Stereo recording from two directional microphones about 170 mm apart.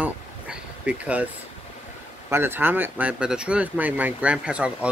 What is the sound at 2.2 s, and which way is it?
Speech, 15° right (ahead or behind).